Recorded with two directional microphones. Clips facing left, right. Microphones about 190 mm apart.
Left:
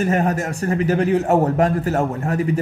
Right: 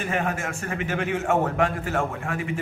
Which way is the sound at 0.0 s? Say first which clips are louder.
Left 7 dB; 40° left (ahead or behind).